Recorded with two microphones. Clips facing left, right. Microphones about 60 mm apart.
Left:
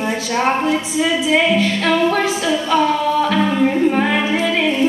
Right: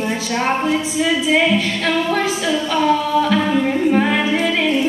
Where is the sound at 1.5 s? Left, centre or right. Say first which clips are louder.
Left 3 dB; centre.